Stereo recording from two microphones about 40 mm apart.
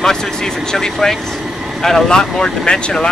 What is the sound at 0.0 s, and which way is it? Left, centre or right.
Speech, centre.